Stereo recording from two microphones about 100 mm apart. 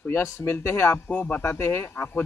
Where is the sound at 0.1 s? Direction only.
25° left (ahead or behind).